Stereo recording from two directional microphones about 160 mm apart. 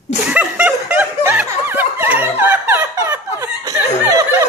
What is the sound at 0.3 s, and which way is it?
Snicker, 10° right (ahead or behind).